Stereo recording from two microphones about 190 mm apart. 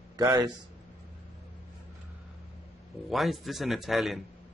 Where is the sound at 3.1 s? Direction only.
Centre (ahead or behind).